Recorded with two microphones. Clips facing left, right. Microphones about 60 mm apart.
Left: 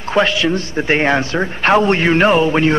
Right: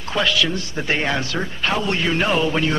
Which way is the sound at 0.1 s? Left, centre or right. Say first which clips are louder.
Left 6 dB; left.